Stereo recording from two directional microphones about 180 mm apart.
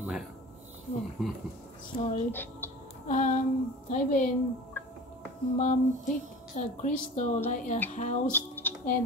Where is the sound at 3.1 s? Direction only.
45° left (ahead or behind).